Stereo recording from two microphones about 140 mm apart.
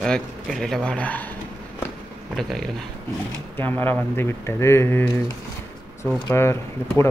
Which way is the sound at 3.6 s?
15° left (ahead or behind).